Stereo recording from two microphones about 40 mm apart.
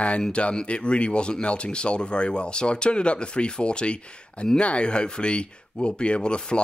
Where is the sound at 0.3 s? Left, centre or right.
Left.